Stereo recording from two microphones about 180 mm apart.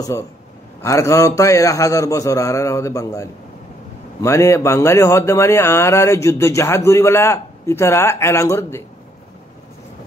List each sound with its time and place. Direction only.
0.8 s speech: 15° left (ahead or behind)